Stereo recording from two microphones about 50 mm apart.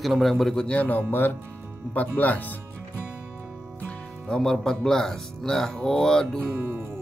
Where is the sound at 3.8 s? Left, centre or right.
Centre.